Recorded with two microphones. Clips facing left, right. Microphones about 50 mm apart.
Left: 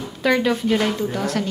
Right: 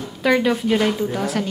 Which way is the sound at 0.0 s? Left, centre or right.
Centre.